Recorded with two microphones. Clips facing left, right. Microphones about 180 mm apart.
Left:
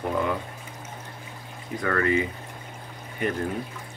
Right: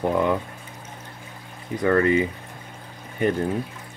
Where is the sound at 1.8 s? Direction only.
25° right (ahead or behind).